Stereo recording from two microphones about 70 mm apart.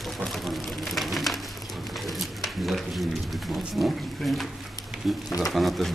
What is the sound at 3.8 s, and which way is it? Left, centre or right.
Wild animals, centre.